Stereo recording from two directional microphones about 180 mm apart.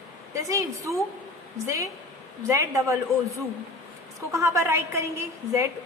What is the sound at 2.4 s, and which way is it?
A woman's voice, 15° right (ahead or behind).